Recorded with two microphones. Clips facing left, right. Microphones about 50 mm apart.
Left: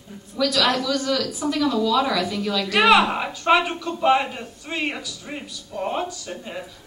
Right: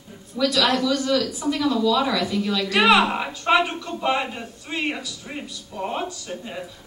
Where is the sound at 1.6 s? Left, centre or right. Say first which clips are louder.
Even; centre.